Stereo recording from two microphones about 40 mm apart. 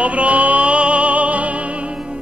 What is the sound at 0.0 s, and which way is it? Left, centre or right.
Music, right.